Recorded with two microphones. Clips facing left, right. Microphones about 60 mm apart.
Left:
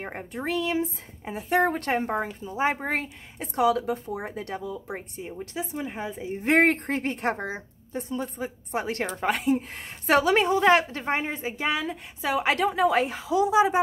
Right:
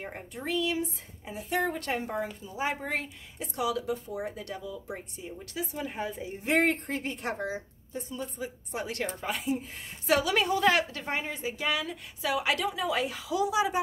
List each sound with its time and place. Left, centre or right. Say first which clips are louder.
0.0 s a woman's voice: left 5 dB; left
5.4 s speech: left 3 dB; left
6.4 s speech: left 5 dB; left
9.2 s a woman's voice: left 11 dB; left